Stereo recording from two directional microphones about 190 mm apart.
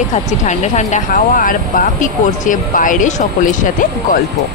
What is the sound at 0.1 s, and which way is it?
Speech, 40° left (ahead or behind).